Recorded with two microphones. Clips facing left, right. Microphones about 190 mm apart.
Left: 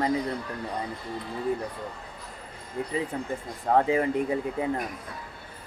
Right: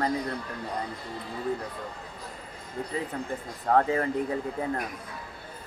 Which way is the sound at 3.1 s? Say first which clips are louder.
Left 1 dB; 20° left (ahead or behind).